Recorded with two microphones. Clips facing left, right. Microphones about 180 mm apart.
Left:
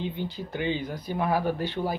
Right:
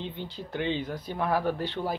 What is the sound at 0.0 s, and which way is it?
Speech, 10° left (ahead or behind).